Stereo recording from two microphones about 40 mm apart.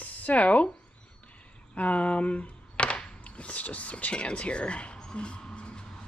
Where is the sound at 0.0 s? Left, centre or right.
Left.